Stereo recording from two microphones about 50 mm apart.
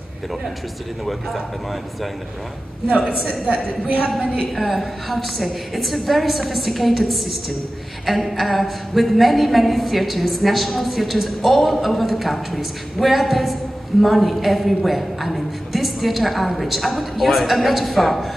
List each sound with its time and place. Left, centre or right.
3.1 s a woman's voice: centre
4.6 s a woman's voice: centre